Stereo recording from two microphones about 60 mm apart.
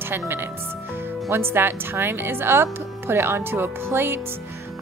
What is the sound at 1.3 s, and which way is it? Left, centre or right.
Speech, right.